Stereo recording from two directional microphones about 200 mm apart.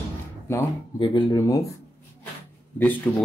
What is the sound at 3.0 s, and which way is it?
Speech, 5° left (ahead or behind).